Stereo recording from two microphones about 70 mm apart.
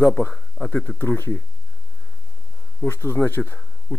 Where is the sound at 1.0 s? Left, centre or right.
Left.